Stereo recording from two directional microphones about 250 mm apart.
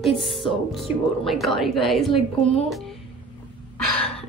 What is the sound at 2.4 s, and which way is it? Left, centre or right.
Speech, left.